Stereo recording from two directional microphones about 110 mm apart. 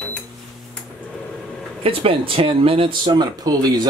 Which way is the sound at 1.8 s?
60° right (ahead or behind).